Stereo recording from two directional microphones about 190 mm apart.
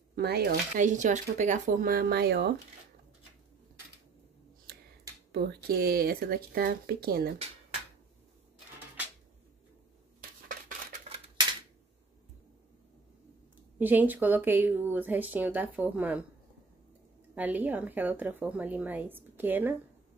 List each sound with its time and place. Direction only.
0.1 s speech: 55° right (ahead or behind)
5.3 s speech: 55° right (ahead or behind)
13.7 s speech: 10° right (ahead or behind)
17.4 s speech: 10° right (ahead or behind)